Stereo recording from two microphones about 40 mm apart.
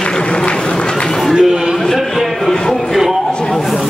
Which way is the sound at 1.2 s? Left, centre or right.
Centre.